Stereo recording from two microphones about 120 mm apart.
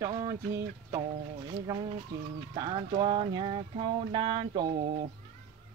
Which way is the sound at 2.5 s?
40° right (ahead or behind).